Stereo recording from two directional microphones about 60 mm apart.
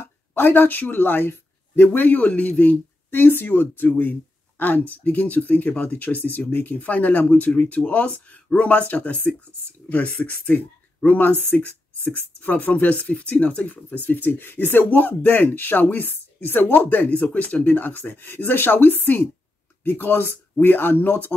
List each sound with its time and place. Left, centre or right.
0.0 s speech: left